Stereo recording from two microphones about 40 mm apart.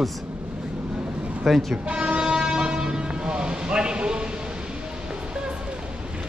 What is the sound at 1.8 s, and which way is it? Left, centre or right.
Vehicle, right.